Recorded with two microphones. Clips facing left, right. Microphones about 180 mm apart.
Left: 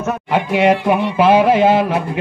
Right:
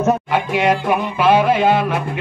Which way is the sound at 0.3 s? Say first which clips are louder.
Left 3 dB; 30° left (ahead or behind).